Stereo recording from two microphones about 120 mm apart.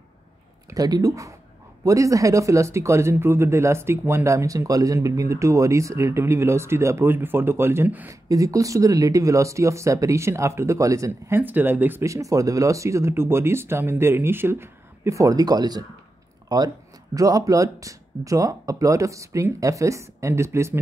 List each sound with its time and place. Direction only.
0.7 s speech: 30° right (ahead or behind)
8.3 s speech: 30° right (ahead or behind)